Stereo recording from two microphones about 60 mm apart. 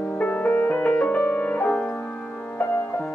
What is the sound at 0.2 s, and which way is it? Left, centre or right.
Music, left.